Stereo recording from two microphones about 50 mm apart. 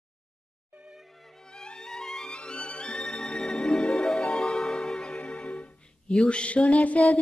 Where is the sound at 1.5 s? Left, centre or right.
Centre.